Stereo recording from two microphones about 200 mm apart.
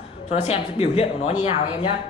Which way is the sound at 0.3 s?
30° left (ahead or behind).